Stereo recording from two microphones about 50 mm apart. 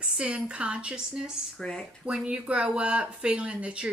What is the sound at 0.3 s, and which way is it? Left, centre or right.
Speech, right.